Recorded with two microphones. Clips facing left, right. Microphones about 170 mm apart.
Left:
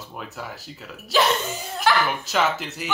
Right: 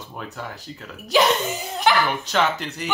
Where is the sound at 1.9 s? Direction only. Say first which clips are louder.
Right 1 dB; 20° right (ahead or behind).